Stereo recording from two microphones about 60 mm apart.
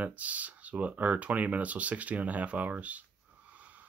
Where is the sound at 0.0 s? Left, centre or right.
Right.